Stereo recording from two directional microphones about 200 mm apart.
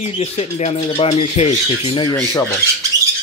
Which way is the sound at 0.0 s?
30° left (ahead or behind).